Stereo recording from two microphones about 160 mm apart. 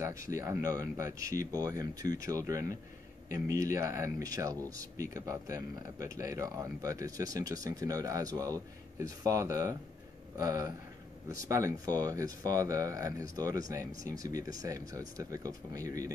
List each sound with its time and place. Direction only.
0.0 s speech: 20° right (ahead or behind)